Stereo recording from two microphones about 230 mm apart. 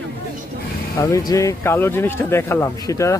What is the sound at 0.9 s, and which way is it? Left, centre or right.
Speech, centre.